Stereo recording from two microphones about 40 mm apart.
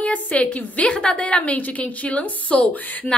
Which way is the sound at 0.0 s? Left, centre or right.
Left.